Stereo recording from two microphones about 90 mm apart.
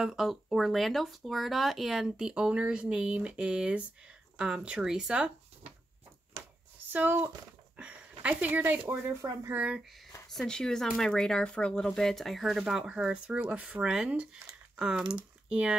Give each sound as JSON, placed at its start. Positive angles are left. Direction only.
{"t": 0.0, "sound": "speech", "side_deg": -5}
{"t": 6.9, "sound": "speech", "side_deg": -20}
{"t": 10.3, "sound": "speech", "side_deg": 5}
{"t": 15.4, "sound": "a sound", "side_deg": -10}